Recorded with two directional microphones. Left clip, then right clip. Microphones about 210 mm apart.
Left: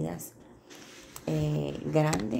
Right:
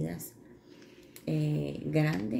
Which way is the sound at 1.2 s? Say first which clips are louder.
Left 2 dB; centre (ahead or behind).